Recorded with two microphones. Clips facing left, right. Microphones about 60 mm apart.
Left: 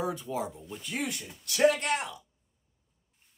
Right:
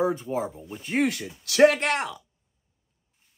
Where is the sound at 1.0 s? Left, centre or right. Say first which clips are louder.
Right 9 dB; right.